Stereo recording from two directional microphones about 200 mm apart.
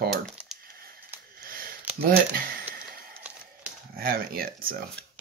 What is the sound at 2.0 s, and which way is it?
Speech, 50° right (ahead or behind).